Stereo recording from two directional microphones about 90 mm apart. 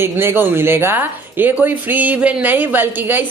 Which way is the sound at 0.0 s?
25° right (ahead or behind).